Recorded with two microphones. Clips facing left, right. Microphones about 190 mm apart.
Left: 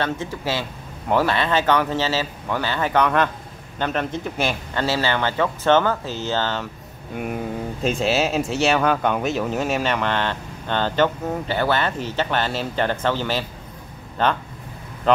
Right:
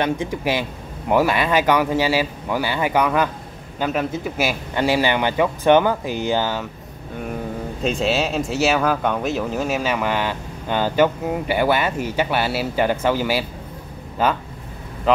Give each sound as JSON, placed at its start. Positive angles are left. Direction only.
{"t": 0.0, "sound": "speech", "side_deg": -15}
{"t": 7.8, "sound": "speech", "side_deg": 0}